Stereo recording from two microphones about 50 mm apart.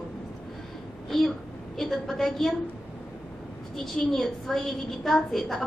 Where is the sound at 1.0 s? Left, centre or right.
Centre.